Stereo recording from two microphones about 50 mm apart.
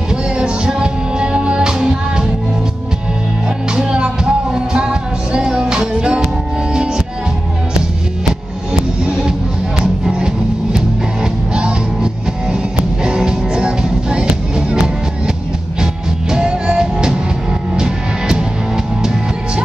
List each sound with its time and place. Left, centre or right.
0.1 s music: centre
3.7 s music: centre
10.0 s music: centre
15.8 s music: centre